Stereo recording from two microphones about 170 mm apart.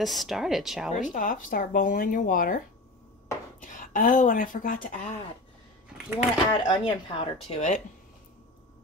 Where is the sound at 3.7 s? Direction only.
50° left (ahead or behind).